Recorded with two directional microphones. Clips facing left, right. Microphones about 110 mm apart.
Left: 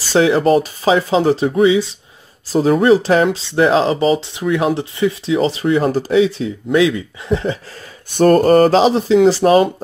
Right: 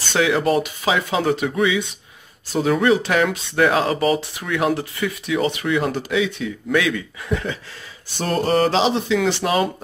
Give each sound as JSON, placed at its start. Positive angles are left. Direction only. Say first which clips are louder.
{"t": 0.1, "sound": "speech", "louder": "left 6 dB", "side_deg": 35}
{"t": 8.1, "sound": "speech", "louder": "left 10 dB", "side_deg": 50}